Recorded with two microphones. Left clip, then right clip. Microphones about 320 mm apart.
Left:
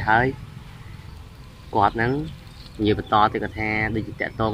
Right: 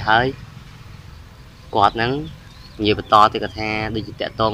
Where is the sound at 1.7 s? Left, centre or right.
Centre.